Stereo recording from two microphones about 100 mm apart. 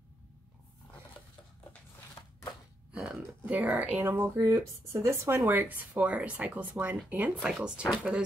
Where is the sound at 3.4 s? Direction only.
15° right (ahead or behind).